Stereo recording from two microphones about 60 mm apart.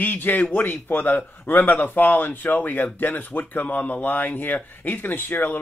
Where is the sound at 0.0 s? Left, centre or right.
Left.